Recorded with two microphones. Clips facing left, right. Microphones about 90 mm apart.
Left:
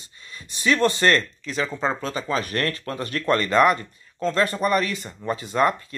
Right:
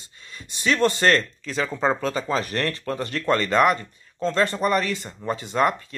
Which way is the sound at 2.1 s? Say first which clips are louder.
Right 1 dB; 30° right (ahead or behind).